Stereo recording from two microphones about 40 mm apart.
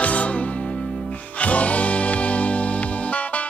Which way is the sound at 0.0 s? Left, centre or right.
Left.